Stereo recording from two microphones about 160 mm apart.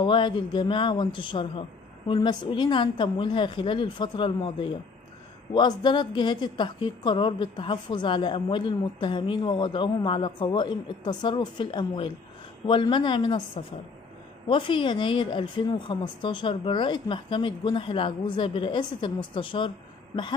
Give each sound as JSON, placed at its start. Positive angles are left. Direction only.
{"t": 0.0, "sound": "a woman's voice", "side_deg": 30}